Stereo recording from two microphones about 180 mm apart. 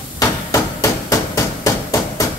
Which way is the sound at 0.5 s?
20° left (ahead or behind).